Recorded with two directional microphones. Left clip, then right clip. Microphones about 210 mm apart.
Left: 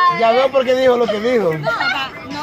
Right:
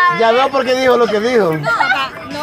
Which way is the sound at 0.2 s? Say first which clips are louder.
Right 1 dB; 40° right (ahead or behind).